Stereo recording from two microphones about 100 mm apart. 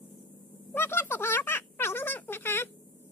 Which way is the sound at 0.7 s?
20° left (ahead or behind).